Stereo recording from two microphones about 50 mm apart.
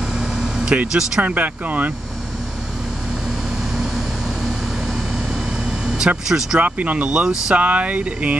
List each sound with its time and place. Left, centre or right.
0.1 s air conditioning: centre
1.2 s speech: right
3.7 s vehicle: centre
6.6 s speech: right
7.5 s speech: right